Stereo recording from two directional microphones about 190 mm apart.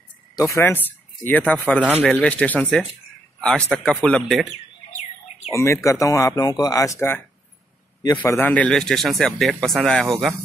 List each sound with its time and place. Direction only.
0.4 s speech: 15° left (ahead or behind)
5.5 s speech: 15° left (ahead or behind)
8.2 s speech: 10° left (ahead or behind)